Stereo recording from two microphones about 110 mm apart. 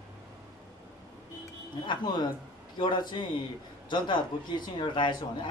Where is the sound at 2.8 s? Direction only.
45° left (ahead or behind).